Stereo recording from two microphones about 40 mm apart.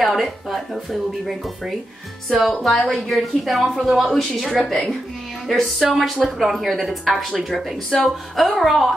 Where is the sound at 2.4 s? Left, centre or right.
Centre.